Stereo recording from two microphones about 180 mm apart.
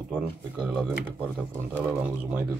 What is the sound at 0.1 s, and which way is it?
Speech, 5° right (ahead or behind).